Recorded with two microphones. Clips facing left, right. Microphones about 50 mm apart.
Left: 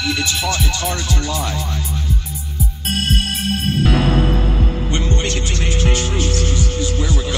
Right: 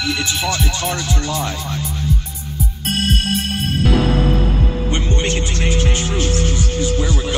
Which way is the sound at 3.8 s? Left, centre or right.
Left.